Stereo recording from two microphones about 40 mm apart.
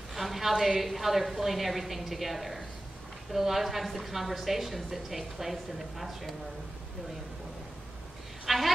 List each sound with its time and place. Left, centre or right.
0.1 s a woman's voice: centre
8.5 s a woman's voice: centre